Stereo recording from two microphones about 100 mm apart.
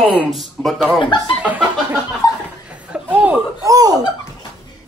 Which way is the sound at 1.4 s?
15° right (ahead or behind).